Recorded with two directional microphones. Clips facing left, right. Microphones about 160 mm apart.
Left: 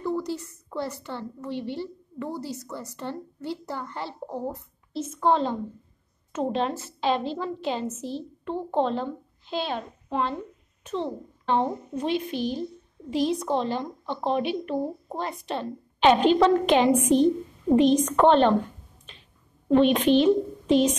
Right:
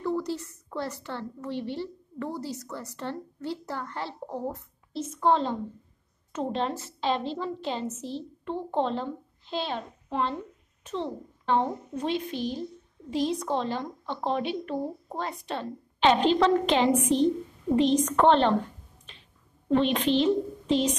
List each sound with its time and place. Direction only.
0.0 s a woman's voice: 5° left (ahead or behind)
11.4 s a woman's voice: 20° left (ahead or behind)
12.4 s a woman's voice: 75° left (ahead or behind)
13.4 s a woman's voice: 15° left (ahead or behind)
19.7 s a woman's voice: 15° left (ahead or behind)